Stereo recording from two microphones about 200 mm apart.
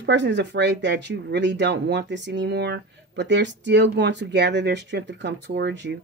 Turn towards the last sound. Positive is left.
turn(degrees=-60)  # may be behind; listen again after turning